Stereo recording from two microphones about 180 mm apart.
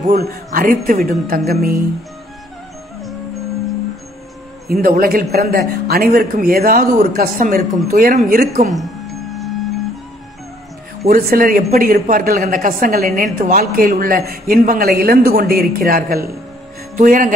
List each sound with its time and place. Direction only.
0.0 s a woman's voice: 55° right (ahead or behind)
4.8 s a woman's voice: 55° right (ahead or behind)
8.7 s music: centre (ahead or behind)
11.1 s a woman's voice: 55° right (ahead or behind)
16.9 s speech: 45° right (ahead or behind)